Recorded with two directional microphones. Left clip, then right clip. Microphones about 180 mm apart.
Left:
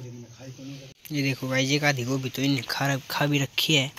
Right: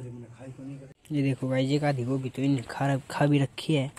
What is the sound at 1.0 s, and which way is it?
Speech, 25° right (ahead or behind).